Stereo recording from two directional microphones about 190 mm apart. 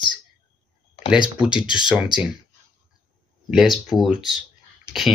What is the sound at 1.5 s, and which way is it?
Speech, 25° left (ahead or behind).